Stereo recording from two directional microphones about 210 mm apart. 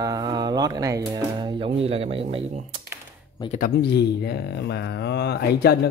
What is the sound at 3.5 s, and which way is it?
Speech, 45° left (ahead or behind).